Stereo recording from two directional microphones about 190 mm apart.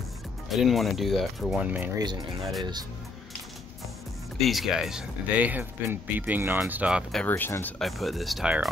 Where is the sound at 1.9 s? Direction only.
20° right (ahead or behind).